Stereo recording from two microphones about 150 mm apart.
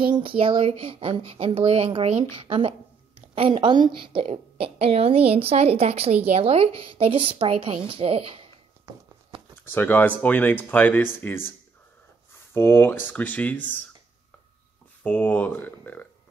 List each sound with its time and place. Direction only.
0.1 s a woman's voice: 35° right (ahead or behind)
8.8 s a sound: 25° right (ahead or behind)
9.7 s speech: 10° left (ahead or behind)
12.5 s speech: 15° left (ahead or behind)
15.0 s speech: 10° left (ahead or behind)